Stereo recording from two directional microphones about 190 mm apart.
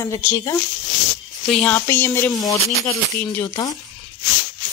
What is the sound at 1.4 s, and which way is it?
A woman's voice, 5° left (ahead or behind).